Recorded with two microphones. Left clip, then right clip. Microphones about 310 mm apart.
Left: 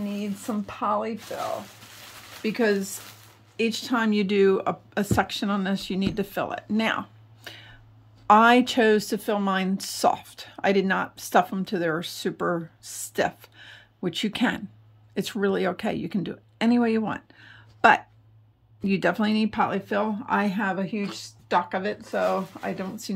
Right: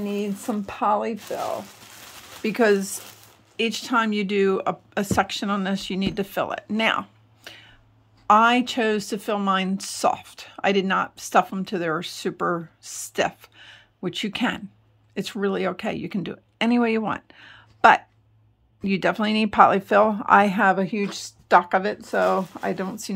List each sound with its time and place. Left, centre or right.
0.0 s speech: centre
2.4 s speech: centre